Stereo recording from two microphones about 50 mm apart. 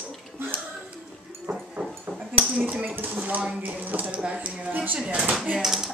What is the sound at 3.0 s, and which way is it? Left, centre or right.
Speech, right.